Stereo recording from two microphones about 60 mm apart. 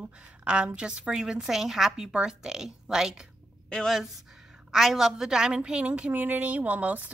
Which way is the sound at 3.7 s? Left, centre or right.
Centre.